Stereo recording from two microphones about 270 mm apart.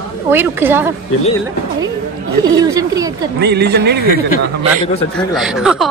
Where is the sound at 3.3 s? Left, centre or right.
Right.